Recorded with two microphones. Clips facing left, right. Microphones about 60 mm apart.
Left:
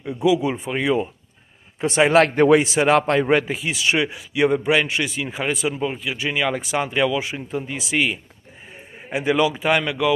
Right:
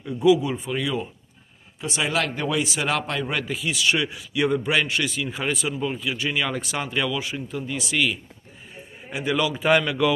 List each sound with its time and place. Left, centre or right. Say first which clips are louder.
0.0 s a man's voice: even; centre
1.8 s speech: left 9 dB; left
2.6 s a man's voice: left 8 dB; left; by 9.6 s centre
9.6 s speech: even; centre